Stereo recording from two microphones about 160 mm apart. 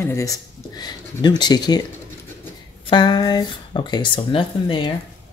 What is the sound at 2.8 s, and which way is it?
Speech, 25° left (ahead or behind).